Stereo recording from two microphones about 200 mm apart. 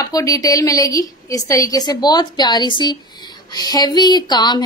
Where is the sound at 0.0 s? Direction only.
15° left (ahead or behind).